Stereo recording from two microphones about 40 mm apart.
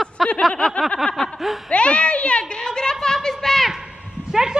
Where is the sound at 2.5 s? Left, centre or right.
Centre.